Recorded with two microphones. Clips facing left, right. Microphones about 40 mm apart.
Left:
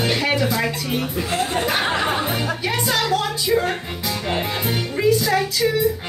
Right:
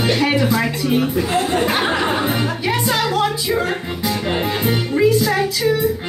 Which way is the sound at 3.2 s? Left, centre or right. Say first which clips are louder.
Right 2 dB; centre.